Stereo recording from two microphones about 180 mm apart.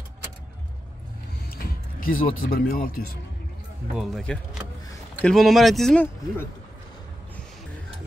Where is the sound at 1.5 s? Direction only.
55° left (ahead or behind).